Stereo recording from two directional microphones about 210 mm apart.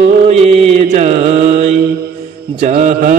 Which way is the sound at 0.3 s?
30° right (ahead or behind).